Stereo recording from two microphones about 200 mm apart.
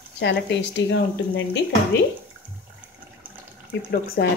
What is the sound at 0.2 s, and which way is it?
Speech, 60° left (ahead or behind).